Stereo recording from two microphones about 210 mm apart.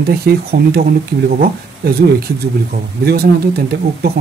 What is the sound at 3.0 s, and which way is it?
Speech, 45° right (ahead or behind).